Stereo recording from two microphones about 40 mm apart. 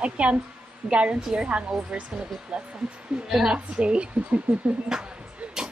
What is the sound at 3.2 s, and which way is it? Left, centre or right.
Speech, centre.